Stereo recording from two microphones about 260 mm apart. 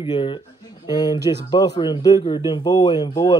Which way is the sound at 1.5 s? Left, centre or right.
Centre.